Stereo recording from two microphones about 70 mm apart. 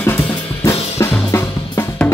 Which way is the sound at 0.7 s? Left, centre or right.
Left.